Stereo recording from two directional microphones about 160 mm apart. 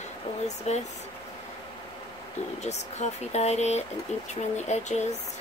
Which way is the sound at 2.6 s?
45° left (ahead or behind).